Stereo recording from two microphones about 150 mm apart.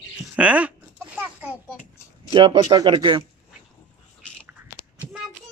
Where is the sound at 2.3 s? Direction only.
35° right (ahead or behind).